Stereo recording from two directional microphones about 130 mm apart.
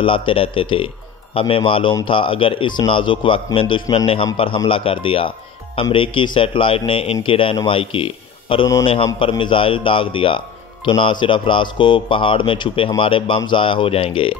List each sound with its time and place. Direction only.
0.0 s a man's voice: 40° left (ahead or behind)